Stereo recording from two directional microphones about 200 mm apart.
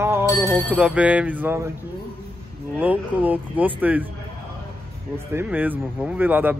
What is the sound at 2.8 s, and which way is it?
Speech, 10° right (ahead or behind).